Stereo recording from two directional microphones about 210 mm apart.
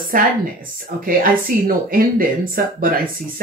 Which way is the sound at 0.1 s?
40° right (ahead or behind).